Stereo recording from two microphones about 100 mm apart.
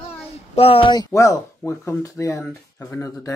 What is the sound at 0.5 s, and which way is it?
Speech, 75° left (ahead or behind).